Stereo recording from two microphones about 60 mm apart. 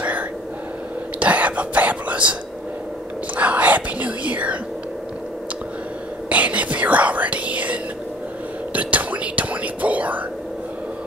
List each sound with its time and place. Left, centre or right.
1.2 s whispering: right
3.3 s whispering: right
6.2 s whispering: right